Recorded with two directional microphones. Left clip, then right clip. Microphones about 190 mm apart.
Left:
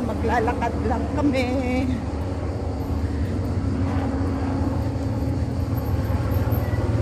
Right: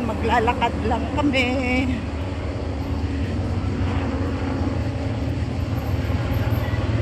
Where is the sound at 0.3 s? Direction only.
5° right (ahead or behind).